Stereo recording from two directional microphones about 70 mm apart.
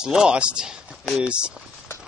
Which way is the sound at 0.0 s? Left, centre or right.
Centre.